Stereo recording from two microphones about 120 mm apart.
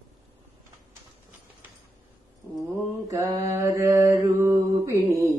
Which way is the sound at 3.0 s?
30° right (ahead or behind).